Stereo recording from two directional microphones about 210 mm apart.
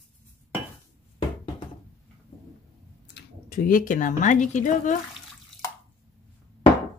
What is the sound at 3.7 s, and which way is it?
Speech, 40° left (ahead or behind).